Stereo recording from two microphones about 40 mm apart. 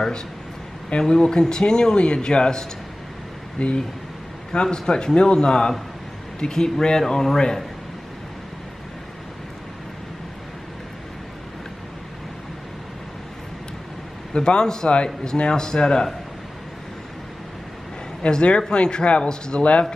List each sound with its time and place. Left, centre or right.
0.8 s speech: centre
4.5 s speech: centre
14.3 s speech: left
18.3 s speech: left